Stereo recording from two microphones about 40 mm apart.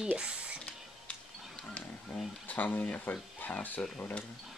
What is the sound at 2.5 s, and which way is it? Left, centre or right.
Speech, left.